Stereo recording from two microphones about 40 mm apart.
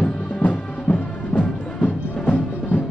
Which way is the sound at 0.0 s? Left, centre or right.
Left.